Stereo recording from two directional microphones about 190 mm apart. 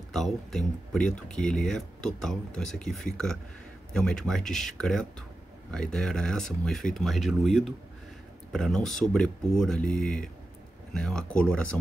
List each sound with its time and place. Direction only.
0.1 s speech: centre (ahead or behind)